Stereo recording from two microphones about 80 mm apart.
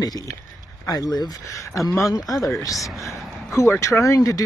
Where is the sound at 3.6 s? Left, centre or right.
Left.